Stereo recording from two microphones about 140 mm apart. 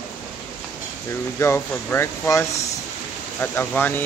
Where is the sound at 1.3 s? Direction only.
20° left (ahead or behind).